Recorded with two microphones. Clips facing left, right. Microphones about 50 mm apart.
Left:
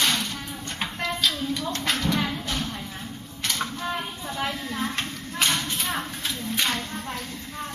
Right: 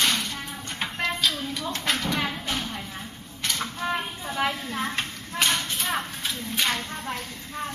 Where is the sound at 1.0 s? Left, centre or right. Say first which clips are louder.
Left 1 dB; centre.